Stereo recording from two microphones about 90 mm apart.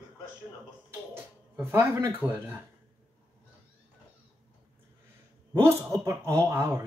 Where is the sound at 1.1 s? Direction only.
25° right (ahead or behind).